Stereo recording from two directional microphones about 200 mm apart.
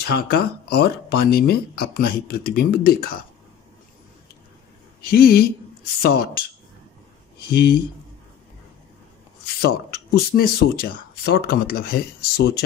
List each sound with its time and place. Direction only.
0.0 s speech: 50° left (ahead or behind)
5.0 s speech: 50° left (ahead or behind)
7.4 s speech: 55° left (ahead or behind)
9.6 s speech: 55° left (ahead or behind)